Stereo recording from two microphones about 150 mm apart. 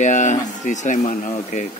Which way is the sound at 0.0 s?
55° left (ahead or behind).